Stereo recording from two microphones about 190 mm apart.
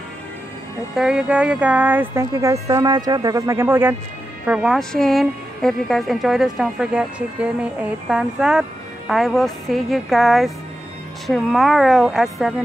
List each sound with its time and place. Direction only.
0.9 s a woman's voice: 5° right (ahead or behind)